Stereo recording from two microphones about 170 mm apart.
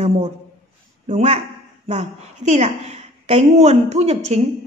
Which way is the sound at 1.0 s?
45° right (ahead or behind).